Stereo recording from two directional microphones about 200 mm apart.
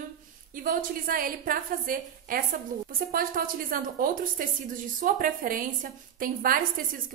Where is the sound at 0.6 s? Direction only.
45° right (ahead or behind).